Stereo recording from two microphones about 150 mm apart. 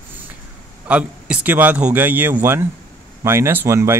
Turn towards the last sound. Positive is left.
turn(degrees=-20)  # may be behind; listen again after turning